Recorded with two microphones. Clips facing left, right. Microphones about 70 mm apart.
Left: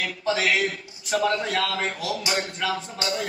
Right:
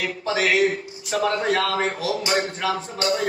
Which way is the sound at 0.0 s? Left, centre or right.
Right.